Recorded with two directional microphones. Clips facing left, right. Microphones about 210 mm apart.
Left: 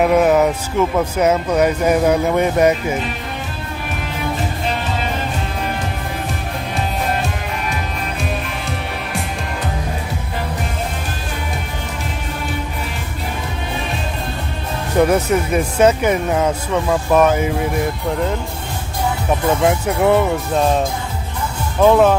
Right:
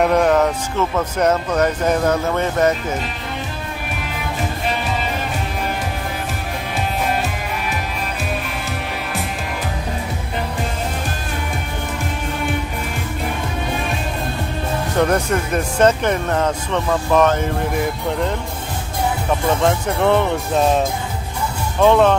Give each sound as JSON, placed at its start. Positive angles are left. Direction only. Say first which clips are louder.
{"t": 0.0, "sound": "speech", "louder": "left 2 dB", "side_deg": 5}
{"t": 15.0, "sound": "speech", "louder": "left 4 dB", "side_deg": 5}
{"t": 19.6, "sound": "speech", "louder": "left 2 dB", "side_deg": 10}